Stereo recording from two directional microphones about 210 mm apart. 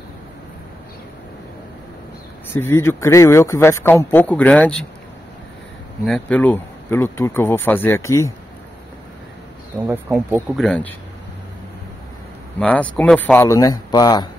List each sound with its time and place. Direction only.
2.5 s speech: 10° left (ahead or behind)
6.0 s speech: 5° left (ahead or behind)
9.8 s speech: centre (ahead or behind)
12.5 s speech: 5° left (ahead or behind)